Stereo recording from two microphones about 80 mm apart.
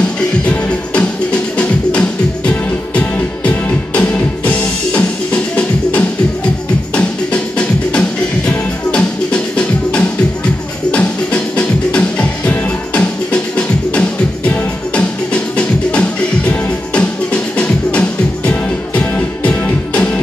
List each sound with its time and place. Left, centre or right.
0.5 s music: centre
8.5 s music: centre